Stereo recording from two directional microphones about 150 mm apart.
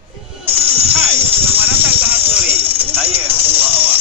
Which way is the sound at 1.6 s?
15° right (ahead or behind).